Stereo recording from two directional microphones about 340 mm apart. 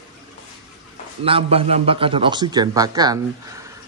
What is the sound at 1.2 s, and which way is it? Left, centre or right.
Speech, centre.